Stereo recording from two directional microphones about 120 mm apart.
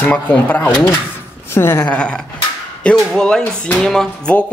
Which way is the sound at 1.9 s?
10° left (ahead or behind).